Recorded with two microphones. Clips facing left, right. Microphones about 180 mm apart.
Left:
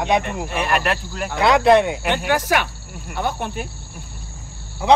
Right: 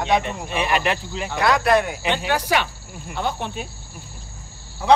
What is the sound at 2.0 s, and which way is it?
Speech, 5° left (ahead or behind).